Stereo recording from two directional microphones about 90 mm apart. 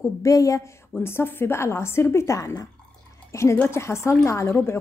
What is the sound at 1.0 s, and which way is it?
A woman's voice, 25° left (ahead or behind).